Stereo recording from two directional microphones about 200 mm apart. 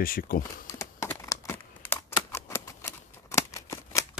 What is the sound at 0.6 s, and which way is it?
Crumpling, 15° left (ahead or behind).